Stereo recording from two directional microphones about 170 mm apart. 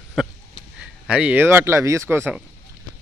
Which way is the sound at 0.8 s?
5° right (ahead or behind).